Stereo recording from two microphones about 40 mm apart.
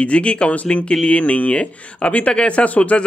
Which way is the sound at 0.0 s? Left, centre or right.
Left.